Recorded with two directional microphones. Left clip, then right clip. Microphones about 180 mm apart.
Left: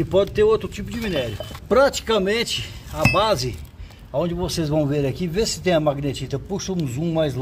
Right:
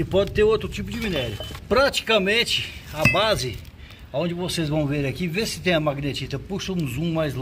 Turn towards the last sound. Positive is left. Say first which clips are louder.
# left 3 dB
turn(degrees=30)  # may be behind; listen again after turning